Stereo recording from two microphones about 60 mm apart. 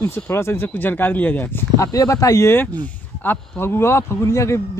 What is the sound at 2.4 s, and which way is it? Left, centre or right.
Speech, left.